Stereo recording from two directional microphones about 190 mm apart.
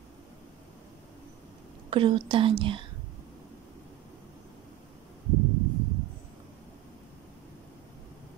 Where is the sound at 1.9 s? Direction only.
25° right (ahead or behind).